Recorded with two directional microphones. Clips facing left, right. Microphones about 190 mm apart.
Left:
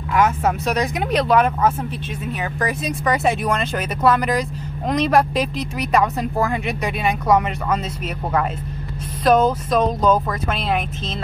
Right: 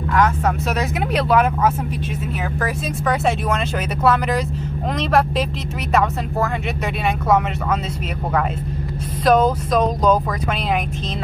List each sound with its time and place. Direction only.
0.7 s speech: 5° right (ahead or behind)
9.7 s speech: 5° left (ahead or behind)